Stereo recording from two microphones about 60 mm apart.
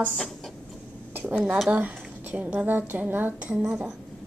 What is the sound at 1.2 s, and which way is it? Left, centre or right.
A woman's voice, centre.